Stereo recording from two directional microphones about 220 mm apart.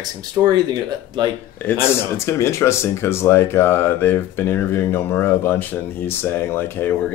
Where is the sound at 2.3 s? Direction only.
10° left (ahead or behind).